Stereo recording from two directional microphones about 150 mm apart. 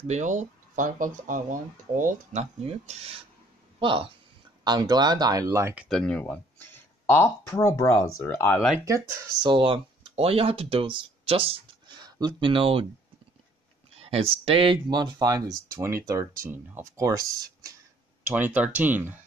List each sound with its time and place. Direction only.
0.1 s speech: 55° right (ahead or behind)
2.7 s speech: 45° right (ahead or behind); by 5.9 s 15° right (ahead or behind)
5.9 s speech: 5° left (ahead or behind)
8.7 s speech: 20° right (ahead or behind)
9.5 s speech: 35° right (ahead or behind)
13.9 s speech: 40° right (ahead or behind); by 17.7 s 25° right (ahead or behind)
18.2 s speech: 10° right (ahead or behind)